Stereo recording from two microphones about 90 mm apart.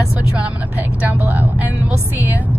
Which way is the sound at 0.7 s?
20° right (ahead or behind).